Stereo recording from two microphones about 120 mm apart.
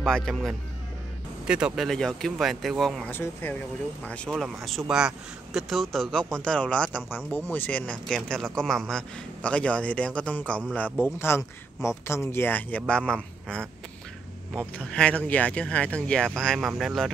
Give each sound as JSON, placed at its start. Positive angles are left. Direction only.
{"t": 0.0, "sound": "speech", "side_deg": 5}
{"t": 1.9, "sound": "speech", "side_deg": 5}
{"t": 3.1, "sound": "speech", "side_deg": 15}